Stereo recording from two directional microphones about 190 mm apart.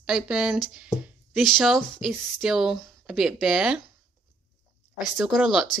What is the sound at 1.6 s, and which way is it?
Speech, centre (ahead or behind).